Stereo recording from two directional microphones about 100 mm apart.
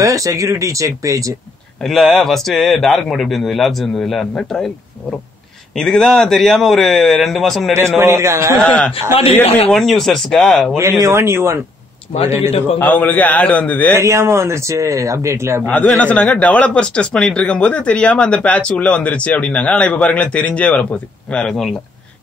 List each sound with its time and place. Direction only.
0.0 s speech: 35° right (ahead or behind)
1.8 s a man's voice: centre (ahead or behind)
5.8 s a man's voice: 5° left (ahead or behind)
8.0 s speech: 25° right (ahead or behind)
8.5 s speech: 10° left (ahead or behind)
9.4 s speech: 85° left
9.7 s a man's voice: centre (ahead or behind)
10.8 s speech: 30° right (ahead or behind)
12.7 s speech: 20° left (ahead or behind)
13.9 s speech: 30° right (ahead or behind)
15.7 s speech: 15° left (ahead or behind)